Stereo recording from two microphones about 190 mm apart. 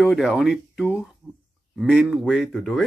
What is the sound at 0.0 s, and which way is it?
Speech, 5° right (ahead or behind).